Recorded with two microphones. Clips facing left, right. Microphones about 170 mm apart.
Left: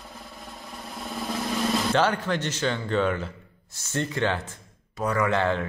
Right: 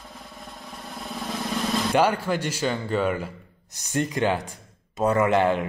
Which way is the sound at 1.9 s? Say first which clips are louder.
Right 5 dB; 10° right (ahead or behind).